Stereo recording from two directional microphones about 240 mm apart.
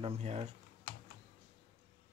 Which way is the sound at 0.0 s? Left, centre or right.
Right.